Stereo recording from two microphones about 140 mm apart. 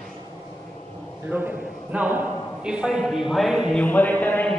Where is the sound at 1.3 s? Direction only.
10° right (ahead or behind).